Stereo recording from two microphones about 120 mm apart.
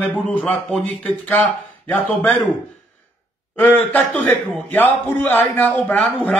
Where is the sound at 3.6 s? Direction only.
15° left (ahead or behind).